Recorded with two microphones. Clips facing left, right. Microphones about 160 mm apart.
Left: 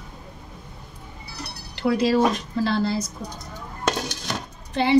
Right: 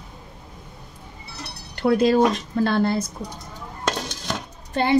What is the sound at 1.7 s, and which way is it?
A woman's voice, 50° right (ahead or behind).